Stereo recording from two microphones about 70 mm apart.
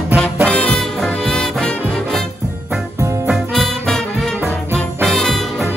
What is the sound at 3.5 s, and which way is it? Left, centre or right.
Music, centre.